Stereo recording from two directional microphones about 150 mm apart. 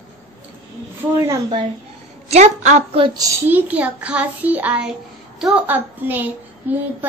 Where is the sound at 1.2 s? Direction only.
20° right (ahead or behind).